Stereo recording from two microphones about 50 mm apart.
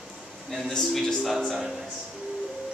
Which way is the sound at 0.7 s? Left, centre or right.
Centre.